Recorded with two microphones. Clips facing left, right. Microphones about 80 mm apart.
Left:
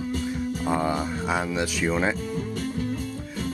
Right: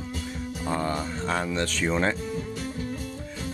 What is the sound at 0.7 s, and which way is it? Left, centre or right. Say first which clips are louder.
Speech: left 2 dB; centre.